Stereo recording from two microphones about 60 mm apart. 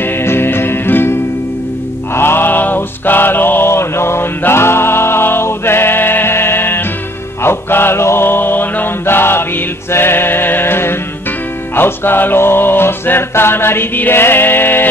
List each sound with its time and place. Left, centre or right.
0.2 s music: left
2.1 s mantra: left
9.9 s music: left